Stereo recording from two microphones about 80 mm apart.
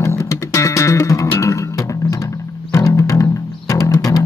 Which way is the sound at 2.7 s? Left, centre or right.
Left.